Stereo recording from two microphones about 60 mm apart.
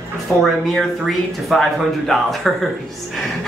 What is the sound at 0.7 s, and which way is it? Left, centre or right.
Speech, centre.